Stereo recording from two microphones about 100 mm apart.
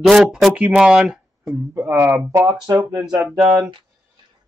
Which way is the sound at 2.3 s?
35° right (ahead or behind).